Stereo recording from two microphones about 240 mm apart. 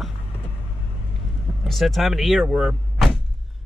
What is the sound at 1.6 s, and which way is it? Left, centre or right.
Speech, centre.